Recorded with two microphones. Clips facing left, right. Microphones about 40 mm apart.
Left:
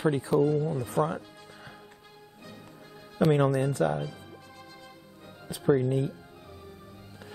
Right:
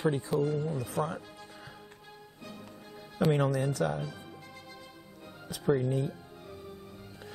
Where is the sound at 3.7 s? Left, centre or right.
Left.